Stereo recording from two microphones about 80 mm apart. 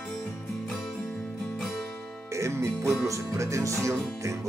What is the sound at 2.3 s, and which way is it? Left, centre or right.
Music, right.